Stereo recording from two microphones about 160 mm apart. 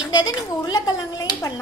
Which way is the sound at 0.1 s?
25° left (ahead or behind).